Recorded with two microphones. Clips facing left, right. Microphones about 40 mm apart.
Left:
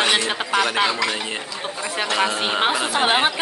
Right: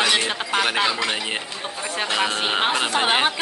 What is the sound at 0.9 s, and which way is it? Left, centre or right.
Speech, right.